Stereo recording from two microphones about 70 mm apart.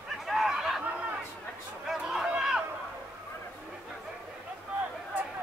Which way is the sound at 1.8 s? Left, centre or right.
Centre.